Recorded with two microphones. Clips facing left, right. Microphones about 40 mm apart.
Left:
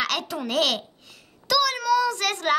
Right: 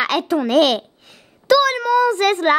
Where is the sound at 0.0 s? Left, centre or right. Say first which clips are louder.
Right 8 dB; right.